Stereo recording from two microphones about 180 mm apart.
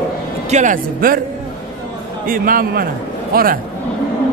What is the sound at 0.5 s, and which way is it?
Speech, 45° right (ahead or behind).